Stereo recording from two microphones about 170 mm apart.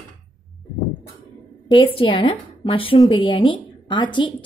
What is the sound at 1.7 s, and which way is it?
A woman's voice, 30° left (ahead or behind).